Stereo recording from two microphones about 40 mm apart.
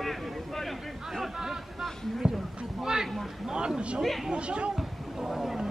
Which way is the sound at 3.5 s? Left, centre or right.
Right.